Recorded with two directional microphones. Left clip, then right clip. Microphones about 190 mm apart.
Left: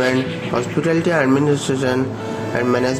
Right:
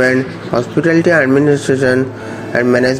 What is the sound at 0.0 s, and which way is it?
Speech, 30° right (ahead or behind).